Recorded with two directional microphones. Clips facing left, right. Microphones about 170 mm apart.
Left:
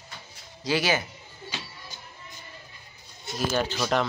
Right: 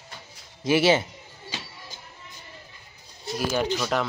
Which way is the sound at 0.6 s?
25° right (ahead or behind).